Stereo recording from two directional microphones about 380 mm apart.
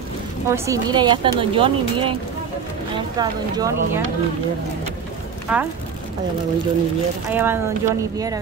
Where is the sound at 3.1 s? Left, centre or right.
Centre.